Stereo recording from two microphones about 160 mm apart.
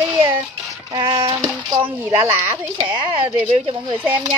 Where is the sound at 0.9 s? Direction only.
30° right (ahead or behind).